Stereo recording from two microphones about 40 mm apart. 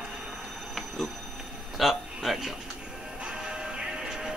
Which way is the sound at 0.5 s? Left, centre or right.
Centre.